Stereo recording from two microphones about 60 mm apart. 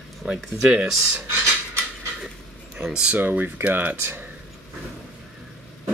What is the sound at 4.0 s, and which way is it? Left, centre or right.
Speech, right.